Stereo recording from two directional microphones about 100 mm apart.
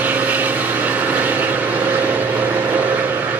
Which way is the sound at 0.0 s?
15° right (ahead or behind).